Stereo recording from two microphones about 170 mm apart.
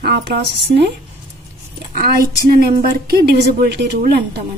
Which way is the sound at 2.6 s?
65° right (ahead or behind).